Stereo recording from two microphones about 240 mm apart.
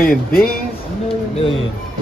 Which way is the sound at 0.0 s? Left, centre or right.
Left.